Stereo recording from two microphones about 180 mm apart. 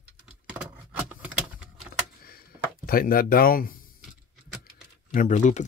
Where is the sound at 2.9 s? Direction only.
55° left (ahead or behind).